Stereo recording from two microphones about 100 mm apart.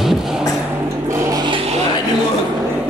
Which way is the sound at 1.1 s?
35° right (ahead or behind).